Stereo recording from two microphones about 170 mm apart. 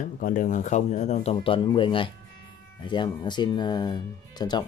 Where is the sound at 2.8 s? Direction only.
25° left (ahead or behind).